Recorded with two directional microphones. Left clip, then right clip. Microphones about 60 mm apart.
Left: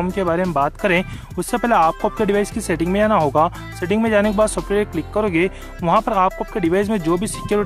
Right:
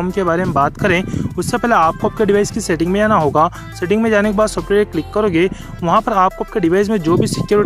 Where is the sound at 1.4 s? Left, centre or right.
Right.